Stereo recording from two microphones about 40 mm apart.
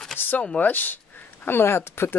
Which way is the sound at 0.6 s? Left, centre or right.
Left.